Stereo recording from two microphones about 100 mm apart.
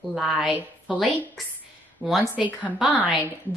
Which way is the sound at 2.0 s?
15° left (ahead or behind).